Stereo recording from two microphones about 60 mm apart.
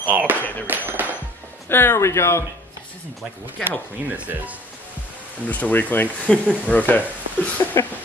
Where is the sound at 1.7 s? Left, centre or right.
Left.